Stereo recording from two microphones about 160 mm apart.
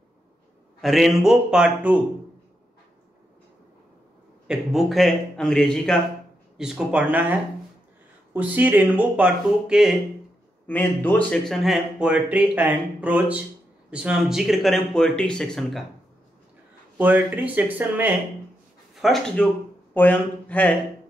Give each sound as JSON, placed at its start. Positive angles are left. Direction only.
{"t": 0.7, "sound": "speech", "side_deg": 0}
{"t": 4.5, "sound": "speech", "side_deg": 0}
{"t": 10.7, "sound": "speech", "side_deg": 10}
{"t": 17.0, "sound": "speech", "side_deg": -10}
{"t": 18.9, "sound": "a man's voice", "side_deg": 0}